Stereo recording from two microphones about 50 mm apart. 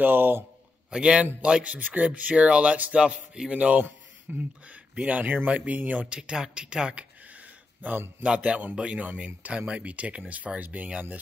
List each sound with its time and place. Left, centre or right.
0.0 s a man's voice: right
0.8 s a man's voice: centre
6.0 s speech: centre
8.4 s speech: right
8.7 s speech: centre
9.0 s speech: right